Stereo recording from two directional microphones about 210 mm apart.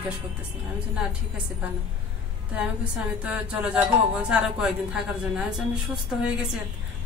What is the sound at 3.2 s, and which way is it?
Speech, 5° right (ahead or behind).